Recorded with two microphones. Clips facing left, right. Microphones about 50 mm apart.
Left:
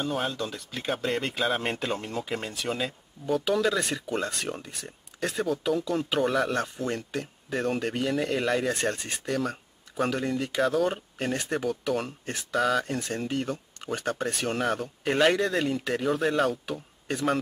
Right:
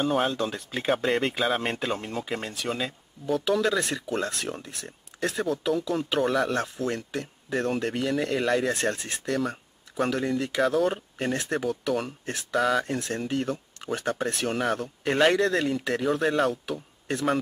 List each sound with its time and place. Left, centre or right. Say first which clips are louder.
0.0 s speech: right 5 dB; centre
0.3 s speech: right 4 dB; right
0.8 s speech: right 4 dB; centre
9.3 s a sound: right 1 dB; centre
10.0 s speech: right 1 dB; centre